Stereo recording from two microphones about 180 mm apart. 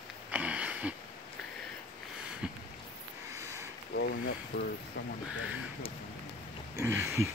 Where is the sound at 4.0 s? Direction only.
75° left (ahead or behind).